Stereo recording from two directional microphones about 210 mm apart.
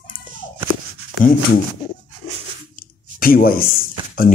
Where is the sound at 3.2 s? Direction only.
45° left (ahead or behind).